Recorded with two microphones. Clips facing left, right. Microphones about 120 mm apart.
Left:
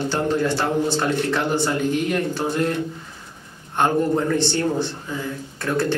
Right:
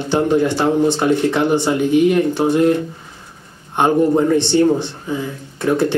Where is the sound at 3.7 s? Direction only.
15° right (ahead or behind).